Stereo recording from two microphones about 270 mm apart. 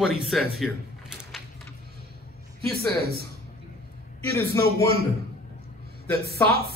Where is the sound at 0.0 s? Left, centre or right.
Centre.